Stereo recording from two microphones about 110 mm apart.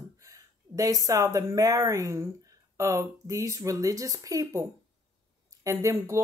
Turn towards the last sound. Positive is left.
turn(degrees=-25)  # may be behind; listen again after turning